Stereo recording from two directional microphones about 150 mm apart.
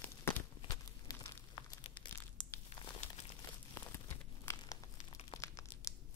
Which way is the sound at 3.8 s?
15° left (ahead or behind).